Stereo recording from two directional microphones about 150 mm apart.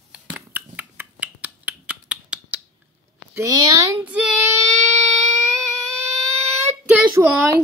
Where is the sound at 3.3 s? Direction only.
25° right (ahead or behind).